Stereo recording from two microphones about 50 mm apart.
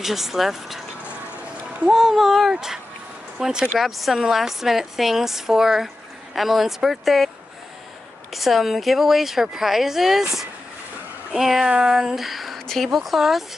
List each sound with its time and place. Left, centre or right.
0.0 s a woman's voice: centre
1.9 s a woman's voice: centre
3.3 s speech: centre
3.7 s a woman's voice: centre
8.3 s a woman's voice: centre
11.8 s a sound: centre
12.6 s a woman's voice: centre